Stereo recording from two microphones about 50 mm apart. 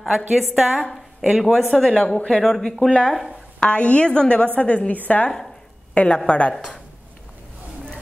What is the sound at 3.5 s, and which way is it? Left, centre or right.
A woman's voice, left.